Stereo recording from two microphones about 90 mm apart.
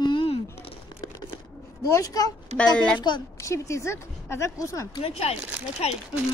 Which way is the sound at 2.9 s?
55° left (ahead or behind).